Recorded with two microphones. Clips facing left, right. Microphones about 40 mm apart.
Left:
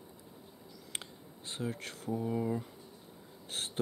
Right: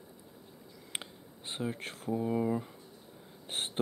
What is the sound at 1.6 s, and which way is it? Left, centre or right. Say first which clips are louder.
Speech: right 2 dB; right.